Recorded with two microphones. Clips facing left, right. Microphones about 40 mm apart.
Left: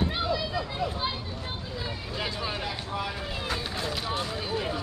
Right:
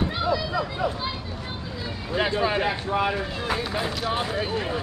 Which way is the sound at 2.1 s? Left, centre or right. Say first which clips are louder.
Right 11 dB; right.